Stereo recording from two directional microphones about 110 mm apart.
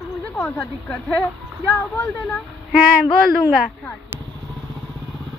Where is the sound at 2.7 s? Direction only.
5° right (ahead or behind).